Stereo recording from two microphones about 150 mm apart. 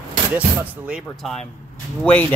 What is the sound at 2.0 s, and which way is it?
Speech, 10° left (ahead or behind).